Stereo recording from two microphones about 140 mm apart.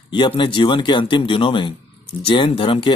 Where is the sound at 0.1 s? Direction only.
40° left (ahead or behind).